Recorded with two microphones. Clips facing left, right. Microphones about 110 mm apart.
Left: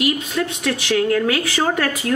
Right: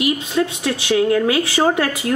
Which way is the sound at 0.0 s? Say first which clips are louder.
Right 2 dB; 25° right (ahead or behind).